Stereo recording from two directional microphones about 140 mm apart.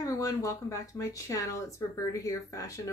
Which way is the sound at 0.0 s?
25° left (ahead or behind).